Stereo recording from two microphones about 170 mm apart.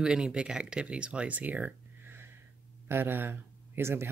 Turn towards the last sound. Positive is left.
turn(degrees=-15)  # may be behind; listen again after turning